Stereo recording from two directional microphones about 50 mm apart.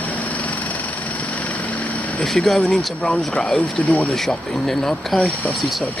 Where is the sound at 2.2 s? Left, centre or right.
Centre.